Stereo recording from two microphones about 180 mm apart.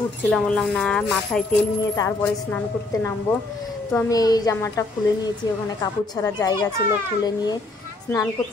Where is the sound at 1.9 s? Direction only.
15° left (ahead or behind).